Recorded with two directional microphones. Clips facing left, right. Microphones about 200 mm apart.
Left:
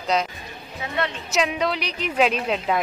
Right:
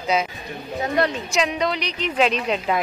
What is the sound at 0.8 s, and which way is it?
Speech, 40° right (ahead or behind).